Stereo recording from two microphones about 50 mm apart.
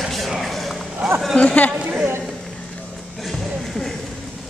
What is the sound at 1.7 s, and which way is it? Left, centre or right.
Chatter, right.